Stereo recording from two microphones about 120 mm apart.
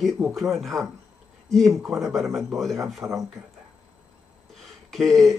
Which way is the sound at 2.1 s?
Centre (ahead or behind).